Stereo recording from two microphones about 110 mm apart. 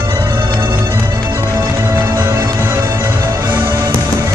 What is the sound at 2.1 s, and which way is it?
Music, 25° right (ahead or behind).